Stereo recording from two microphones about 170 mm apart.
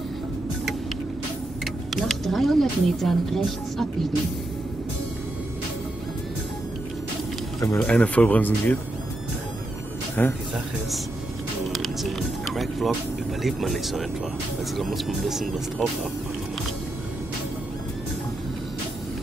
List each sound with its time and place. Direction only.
1.6 s speech: centre (ahead or behind)
7.6 s speech: 10° left (ahead or behind)
10.2 s speech: 10° left (ahead or behind)
11.6 s speech: centre (ahead or behind)